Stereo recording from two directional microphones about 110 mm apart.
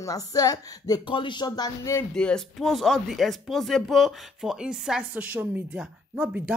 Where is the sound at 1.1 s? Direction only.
45° left (ahead or behind).